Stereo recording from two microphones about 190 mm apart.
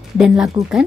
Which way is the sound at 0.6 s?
25° right (ahead or behind).